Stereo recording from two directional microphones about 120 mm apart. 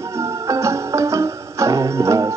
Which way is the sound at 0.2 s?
25° right (ahead or behind).